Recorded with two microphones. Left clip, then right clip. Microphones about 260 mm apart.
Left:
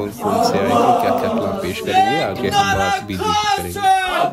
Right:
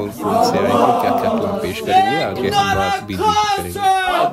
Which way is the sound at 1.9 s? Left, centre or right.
Right.